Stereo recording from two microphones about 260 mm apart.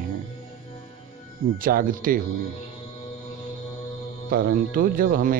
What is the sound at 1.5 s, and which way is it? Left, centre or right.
Speech, right.